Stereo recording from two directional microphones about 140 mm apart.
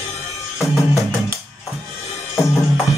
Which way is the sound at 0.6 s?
20° left (ahead or behind).